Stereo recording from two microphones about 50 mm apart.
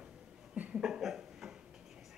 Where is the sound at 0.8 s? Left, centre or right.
Centre.